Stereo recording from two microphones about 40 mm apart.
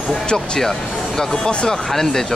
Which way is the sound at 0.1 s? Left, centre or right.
Centre.